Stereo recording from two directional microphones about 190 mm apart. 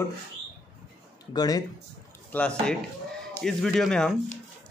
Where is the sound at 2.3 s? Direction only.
5° left (ahead or behind).